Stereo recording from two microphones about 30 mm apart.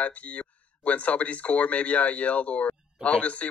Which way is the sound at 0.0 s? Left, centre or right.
Left.